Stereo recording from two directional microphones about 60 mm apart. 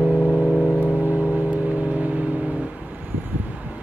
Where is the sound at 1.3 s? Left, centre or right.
Right.